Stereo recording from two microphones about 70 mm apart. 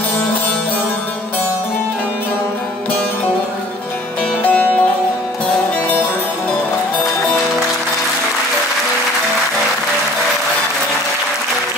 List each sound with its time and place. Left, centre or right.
4.4 s music: left